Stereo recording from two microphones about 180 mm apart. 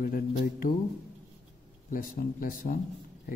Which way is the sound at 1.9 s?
50° left (ahead or behind).